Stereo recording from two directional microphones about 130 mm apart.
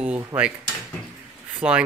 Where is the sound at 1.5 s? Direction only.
10° right (ahead or behind).